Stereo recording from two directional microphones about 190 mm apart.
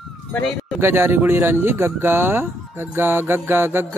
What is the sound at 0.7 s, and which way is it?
Speech, 10° right (ahead or behind).